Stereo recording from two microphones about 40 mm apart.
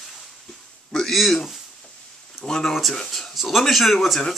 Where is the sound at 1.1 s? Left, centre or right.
Centre.